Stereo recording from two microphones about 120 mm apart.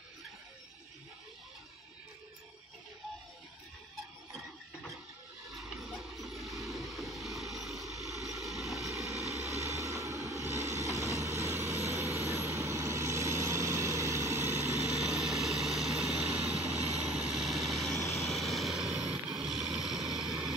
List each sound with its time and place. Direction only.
5.5 s vehicle: centre (ahead or behind)
9.6 s vehicle: 25° right (ahead or behind)
15.0 s vehicle: centre (ahead or behind)